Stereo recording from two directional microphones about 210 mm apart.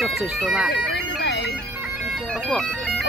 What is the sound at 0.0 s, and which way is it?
Speech, centre (ahead or behind).